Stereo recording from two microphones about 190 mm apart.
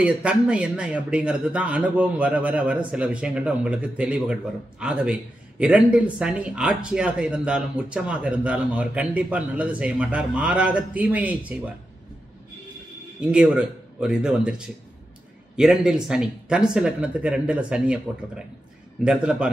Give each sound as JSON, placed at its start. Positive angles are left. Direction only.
{"t": 0.0, "sound": "a man's voice", "side_deg": -5}
{"t": 13.3, "sound": "a man's voice", "side_deg": -5}
{"t": 15.5, "sound": "a man's voice", "side_deg": -5}